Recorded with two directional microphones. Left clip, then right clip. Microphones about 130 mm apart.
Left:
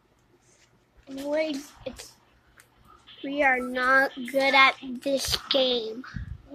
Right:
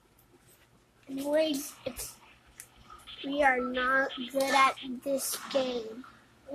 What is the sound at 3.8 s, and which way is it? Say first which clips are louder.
A child's voice: left 6 dB; 40° left (ahead or behind).